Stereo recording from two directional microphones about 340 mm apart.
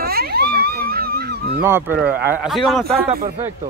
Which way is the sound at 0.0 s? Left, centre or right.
Right.